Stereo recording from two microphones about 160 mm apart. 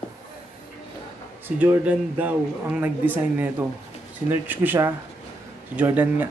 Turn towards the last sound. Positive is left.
turn(degrees=-10)  # may be behind; listen again after turning